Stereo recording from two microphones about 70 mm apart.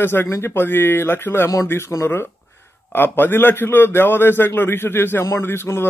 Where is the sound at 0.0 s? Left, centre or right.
Left.